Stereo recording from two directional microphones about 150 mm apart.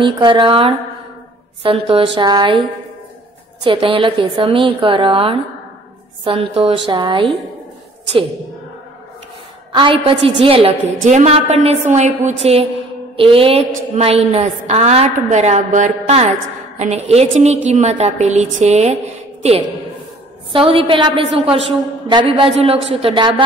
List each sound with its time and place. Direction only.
0.0 s a woman's voice: 30° right (ahead or behind)
3.7 s a woman's voice: 35° right (ahead or behind)
9.7 s a woman's voice: 35° right (ahead or behind)